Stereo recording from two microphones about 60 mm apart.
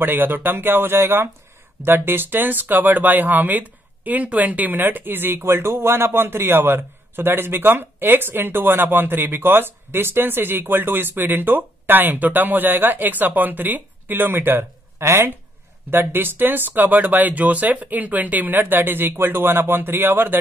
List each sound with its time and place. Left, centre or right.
0.0 s speech: right